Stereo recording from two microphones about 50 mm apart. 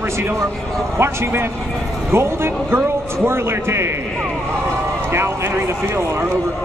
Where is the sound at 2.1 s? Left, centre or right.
Right.